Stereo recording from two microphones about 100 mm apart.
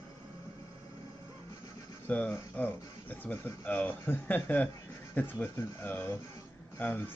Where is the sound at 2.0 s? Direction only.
15° left (ahead or behind).